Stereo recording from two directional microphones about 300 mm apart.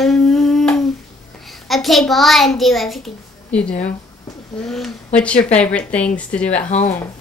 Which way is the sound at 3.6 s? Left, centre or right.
Left.